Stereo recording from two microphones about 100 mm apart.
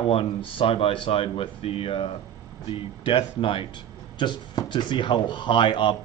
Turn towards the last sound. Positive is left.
turn(degrees=55)  # may be behind; listen again after turning